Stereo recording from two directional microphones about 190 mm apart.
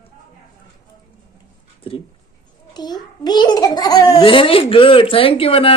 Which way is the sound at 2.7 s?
20° left (ahead or behind).